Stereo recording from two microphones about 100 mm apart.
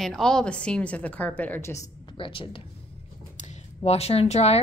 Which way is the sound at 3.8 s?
90° left.